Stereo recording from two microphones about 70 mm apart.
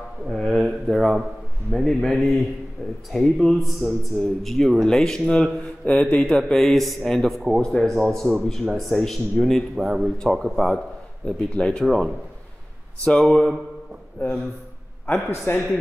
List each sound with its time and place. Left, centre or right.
0.3 s a man's voice: centre
11.8 s a man's voice: centre
15.5 s speech: left